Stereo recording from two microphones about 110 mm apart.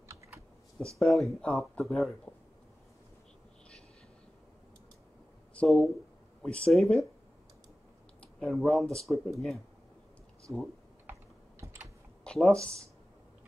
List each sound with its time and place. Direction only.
0.9 s speech: centre (ahead or behind)
5.5 s speech: 5° left (ahead or behind)
8.2 s speech: 5° left (ahead or behind)
11.6 s computer keyboard: 25° right (ahead or behind)
12.3 s speech: 5° left (ahead or behind)